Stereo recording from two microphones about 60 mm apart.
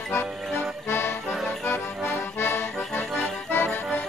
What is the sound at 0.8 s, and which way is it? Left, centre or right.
Accordion, left.